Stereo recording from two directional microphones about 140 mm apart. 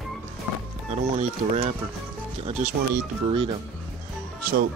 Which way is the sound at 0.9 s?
50° right (ahead or behind).